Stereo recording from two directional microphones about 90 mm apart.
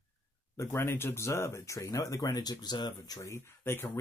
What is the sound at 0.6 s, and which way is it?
Speech, 30° left (ahead or behind).